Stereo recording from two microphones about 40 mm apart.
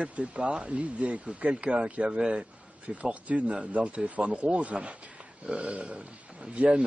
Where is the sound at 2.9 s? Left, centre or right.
Right.